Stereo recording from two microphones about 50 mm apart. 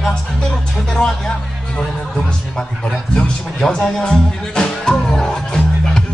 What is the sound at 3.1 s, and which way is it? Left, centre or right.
Speech, centre.